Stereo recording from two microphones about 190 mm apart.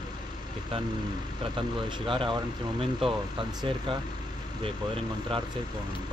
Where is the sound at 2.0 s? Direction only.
25° right (ahead or behind).